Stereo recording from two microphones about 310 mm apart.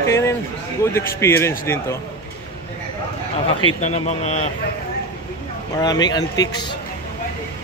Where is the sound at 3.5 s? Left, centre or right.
Left.